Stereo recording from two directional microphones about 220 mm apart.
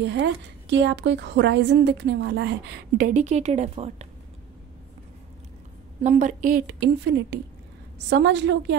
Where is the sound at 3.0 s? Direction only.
35° right (ahead or behind).